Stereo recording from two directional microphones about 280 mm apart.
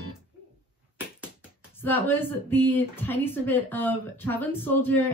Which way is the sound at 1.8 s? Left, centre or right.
Centre.